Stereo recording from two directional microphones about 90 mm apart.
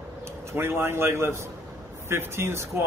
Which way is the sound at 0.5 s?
25° right (ahead or behind).